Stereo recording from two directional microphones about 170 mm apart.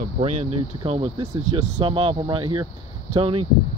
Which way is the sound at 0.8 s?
35° right (ahead or behind).